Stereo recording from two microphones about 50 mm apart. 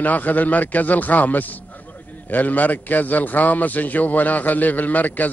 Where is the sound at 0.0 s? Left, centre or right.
Left.